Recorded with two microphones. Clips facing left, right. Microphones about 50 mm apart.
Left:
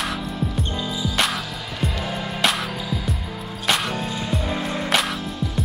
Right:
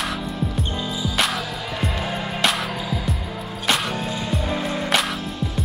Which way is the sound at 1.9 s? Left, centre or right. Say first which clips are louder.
Right 1 dB; centre.